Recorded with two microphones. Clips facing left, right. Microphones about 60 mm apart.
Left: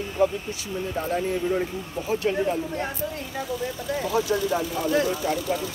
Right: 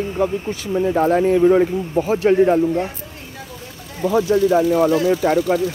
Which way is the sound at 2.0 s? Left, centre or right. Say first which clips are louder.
Right 12 dB; right.